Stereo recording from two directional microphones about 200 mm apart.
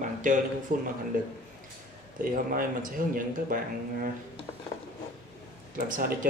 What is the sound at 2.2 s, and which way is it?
Speech, 45° right (ahead or behind).